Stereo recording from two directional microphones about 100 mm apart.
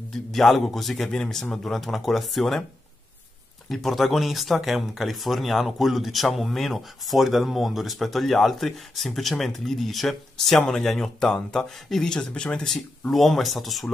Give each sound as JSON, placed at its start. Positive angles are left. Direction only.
{"t": 0.3, "sound": "speech", "side_deg": 0}
{"t": 3.6, "sound": "speech", "side_deg": 0}